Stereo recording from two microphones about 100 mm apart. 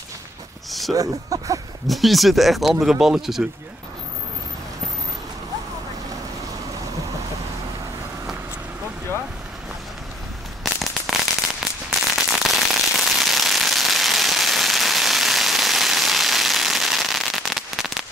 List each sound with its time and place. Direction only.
0.7 s a sound: centre (ahead or behind)
0.9 s speech: 35° right (ahead or behind)
1.9 s speech: centre (ahead or behind)
10.6 s firecracker: centre (ahead or behind)